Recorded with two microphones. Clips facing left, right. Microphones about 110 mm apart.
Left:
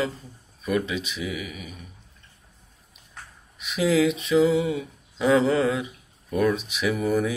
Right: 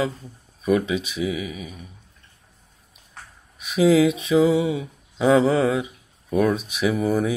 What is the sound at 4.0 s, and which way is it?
Mantra, 15° right (ahead or behind).